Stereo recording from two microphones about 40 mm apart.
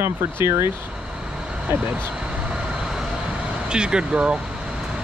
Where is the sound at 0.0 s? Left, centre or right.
Right.